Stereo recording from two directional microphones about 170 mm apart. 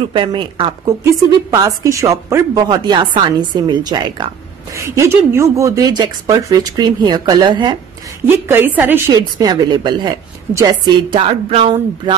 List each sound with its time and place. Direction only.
0.1 s a woman's voice: 25° right (ahead or behind)
8.5 s a woman's voice: 10° right (ahead or behind); by 12.2 s 30° right (ahead or behind)